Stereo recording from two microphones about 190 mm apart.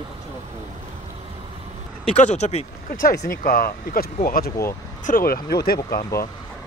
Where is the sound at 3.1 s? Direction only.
55° left (ahead or behind).